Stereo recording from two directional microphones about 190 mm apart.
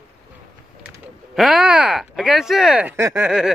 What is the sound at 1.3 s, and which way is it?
Speech, centre (ahead or behind).